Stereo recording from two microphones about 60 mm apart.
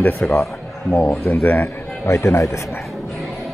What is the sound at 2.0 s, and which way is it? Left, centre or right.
Speech, left.